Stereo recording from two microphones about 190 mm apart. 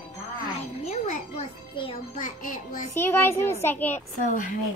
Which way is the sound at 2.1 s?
45° left (ahead or behind).